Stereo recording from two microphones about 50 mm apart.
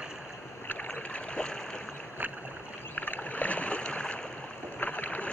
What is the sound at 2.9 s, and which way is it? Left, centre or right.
Rowboat, left.